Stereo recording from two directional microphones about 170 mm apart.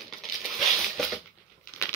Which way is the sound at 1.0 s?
5° left (ahead or behind).